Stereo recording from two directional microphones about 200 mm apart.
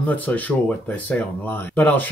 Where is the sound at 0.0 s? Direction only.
10° left (ahead or behind).